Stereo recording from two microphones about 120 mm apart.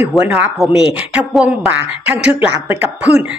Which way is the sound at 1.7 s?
15° right (ahead or behind).